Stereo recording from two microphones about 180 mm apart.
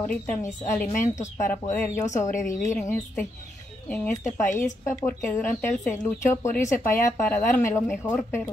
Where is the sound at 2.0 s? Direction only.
40° left (ahead or behind).